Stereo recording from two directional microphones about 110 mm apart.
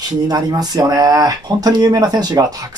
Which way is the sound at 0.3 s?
35° right (ahead or behind).